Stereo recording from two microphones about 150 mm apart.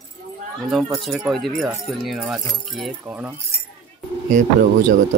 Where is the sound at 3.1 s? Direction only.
10° right (ahead or behind).